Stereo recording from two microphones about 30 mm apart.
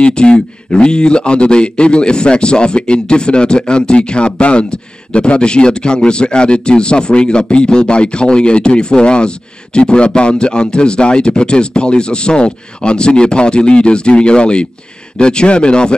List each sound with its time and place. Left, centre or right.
0.0 s speech: left